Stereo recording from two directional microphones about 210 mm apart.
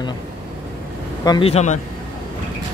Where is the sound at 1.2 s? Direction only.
20° left (ahead or behind).